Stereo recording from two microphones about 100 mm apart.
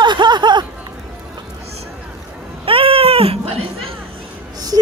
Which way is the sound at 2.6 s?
70° right (ahead or behind).